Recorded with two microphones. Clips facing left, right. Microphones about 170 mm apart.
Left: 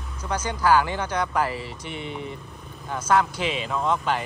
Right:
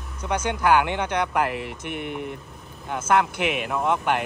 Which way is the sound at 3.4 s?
60° right (ahead or behind).